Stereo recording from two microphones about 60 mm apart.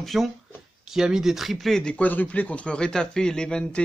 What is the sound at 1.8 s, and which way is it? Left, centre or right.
Speech, left.